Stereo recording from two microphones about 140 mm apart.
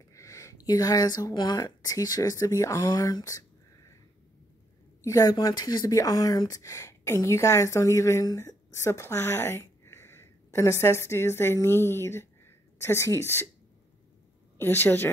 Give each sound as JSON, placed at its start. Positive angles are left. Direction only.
{"t": 0.1, "sound": "speech", "side_deg": 20}
{"t": 5.0, "sound": "speech", "side_deg": 25}
{"t": 14.6, "sound": "a woman's voice", "side_deg": 15}